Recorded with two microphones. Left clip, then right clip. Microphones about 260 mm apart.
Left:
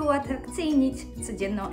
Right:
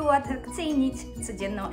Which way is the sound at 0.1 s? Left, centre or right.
Centre.